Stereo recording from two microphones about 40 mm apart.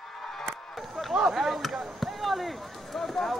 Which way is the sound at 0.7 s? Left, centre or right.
Centre.